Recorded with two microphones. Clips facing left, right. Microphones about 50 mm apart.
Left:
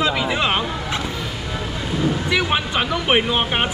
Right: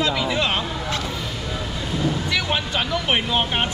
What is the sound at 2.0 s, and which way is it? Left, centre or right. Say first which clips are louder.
Speech: left 3 dB; centre.